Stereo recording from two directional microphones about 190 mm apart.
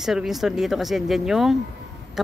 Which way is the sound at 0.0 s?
Centre (ahead or behind).